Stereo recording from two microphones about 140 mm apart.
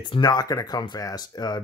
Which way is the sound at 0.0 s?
30° left (ahead or behind).